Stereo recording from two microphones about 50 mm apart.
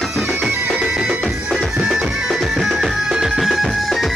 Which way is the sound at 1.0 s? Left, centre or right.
Right.